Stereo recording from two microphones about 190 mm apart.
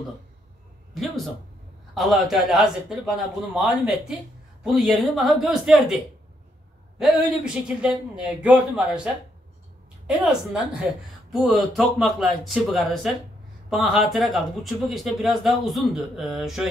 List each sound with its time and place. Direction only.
0.9 s a man's voice: centre (ahead or behind)
4.6 s speech: centre (ahead or behind)
7.0 s speech: 5° right (ahead or behind)